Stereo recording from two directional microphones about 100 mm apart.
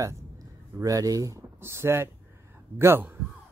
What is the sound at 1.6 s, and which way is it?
Speech, 25° right (ahead or behind).